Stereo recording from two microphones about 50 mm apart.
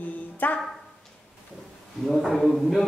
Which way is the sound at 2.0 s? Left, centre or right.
Centre.